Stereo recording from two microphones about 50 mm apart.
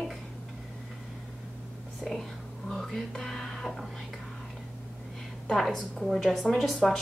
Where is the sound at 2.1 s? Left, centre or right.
Centre.